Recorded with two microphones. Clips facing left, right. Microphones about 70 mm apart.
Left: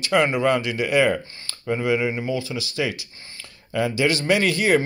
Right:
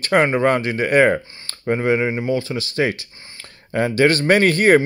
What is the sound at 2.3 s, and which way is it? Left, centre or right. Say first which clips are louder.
Speech: right 5 dB; right.